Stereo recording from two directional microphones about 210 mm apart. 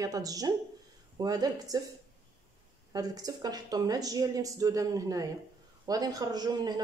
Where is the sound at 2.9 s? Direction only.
15° right (ahead or behind).